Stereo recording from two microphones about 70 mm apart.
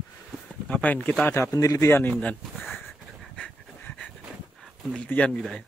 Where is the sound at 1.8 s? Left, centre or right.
Left.